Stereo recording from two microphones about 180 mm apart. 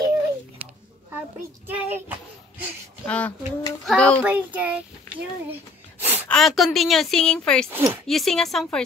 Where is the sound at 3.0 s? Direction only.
10° left (ahead or behind).